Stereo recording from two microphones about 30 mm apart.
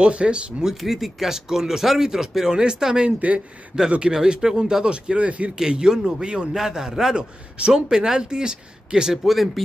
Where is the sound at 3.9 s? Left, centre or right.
Right.